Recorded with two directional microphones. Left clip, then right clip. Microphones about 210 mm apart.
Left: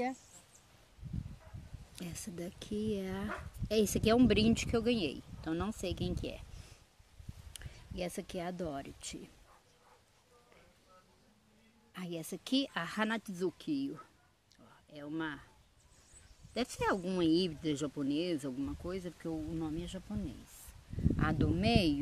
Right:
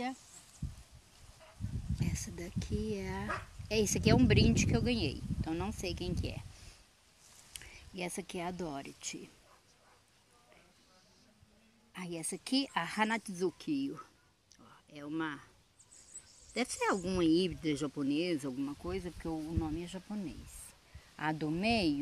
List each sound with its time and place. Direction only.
2.0 s speech: 20° left (ahead or behind)
7.5 s speech: 10° left (ahead or behind)
11.9 s speech: 20° left (ahead or behind)
16.5 s speech: 10° left (ahead or behind)
21.2 s speech: 10° left (ahead or behind)